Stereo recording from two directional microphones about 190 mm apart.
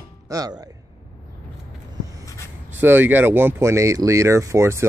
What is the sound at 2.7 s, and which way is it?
Speech, 10° right (ahead or behind).